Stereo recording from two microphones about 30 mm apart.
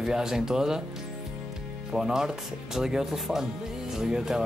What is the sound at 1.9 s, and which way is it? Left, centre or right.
Speech, centre.